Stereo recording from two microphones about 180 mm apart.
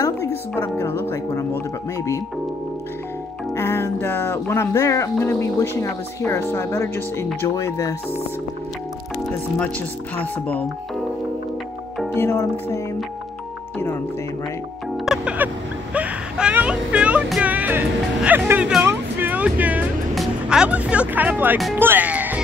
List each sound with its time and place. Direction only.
0.7 s speech: 15° left (ahead or behind)
3.5 s speech: 15° left (ahead or behind)
10.1 s speech: 10° left (ahead or behind)
12.2 s speech: 15° left (ahead or behind)
15.0 s a sound: 10° right (ahead or behind)
21.7 s speech: 10° right (ahead or behind)